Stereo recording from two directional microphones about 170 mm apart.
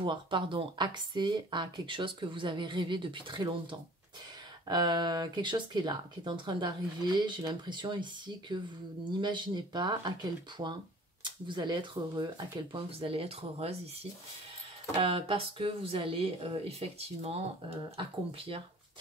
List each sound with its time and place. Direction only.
0.0 s speech: 30° right (ahead or behind)
4.6 s speech: 25° right (ahead or behind)
11.2 s speech: 25° right (ahead or behind)
15.0 s speech: 35° right (ahead or behind)